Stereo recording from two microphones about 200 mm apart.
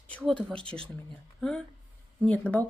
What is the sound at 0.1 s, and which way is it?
Speech, 5° left (ahead or behind).